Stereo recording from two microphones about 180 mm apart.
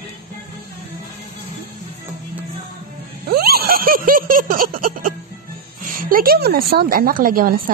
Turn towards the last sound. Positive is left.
turn(degrees=-50)  # may be behind; listen again after turning